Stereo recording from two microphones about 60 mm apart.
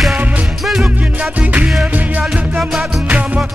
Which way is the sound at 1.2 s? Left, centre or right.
Right.